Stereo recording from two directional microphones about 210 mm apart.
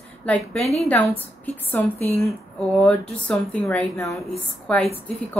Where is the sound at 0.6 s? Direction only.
30° left (ahead or behind).